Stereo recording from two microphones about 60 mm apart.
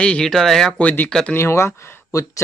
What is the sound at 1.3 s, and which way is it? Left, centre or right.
Speech, left.